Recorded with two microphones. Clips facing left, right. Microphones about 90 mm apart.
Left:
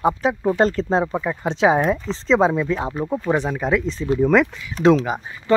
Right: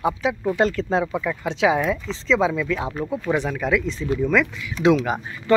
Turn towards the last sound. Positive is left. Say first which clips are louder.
# even
turn(degrees=25)  # may be behind; listen again after turning